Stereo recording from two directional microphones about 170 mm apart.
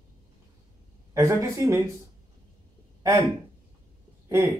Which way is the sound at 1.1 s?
15° right (ahead or behind).